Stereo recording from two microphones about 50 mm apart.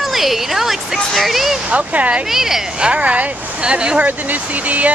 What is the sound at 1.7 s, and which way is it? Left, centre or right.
Speech, right.